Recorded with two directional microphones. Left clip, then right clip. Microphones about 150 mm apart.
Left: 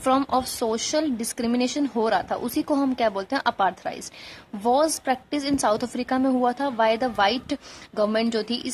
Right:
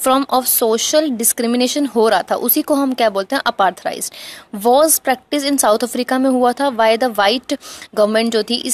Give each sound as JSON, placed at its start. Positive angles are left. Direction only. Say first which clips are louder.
{"t": 0.0, "sound": "a woman's voice", "louder": "right 7 dB", "side_deg": -25}